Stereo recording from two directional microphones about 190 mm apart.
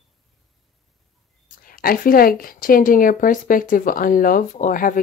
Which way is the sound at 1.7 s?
50° left (ahead or behind).